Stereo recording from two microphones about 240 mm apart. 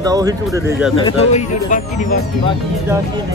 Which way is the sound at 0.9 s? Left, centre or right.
Left.